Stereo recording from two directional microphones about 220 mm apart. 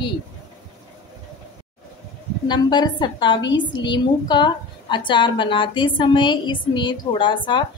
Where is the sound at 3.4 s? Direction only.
55° left (ahead or behind).